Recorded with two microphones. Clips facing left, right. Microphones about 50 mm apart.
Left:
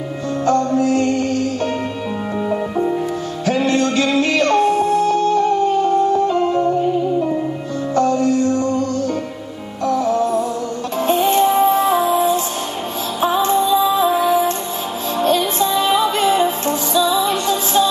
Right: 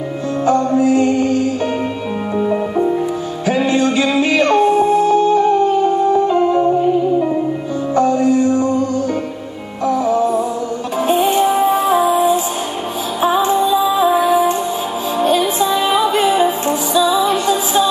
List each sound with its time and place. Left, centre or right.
0.5 s music: centre
3.4 s music: centre